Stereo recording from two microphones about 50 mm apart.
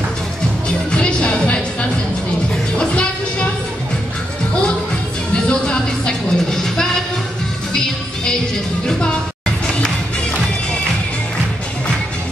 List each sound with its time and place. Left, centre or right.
0.9 s music: left
5.3 s music: centre
9.8 s music: centre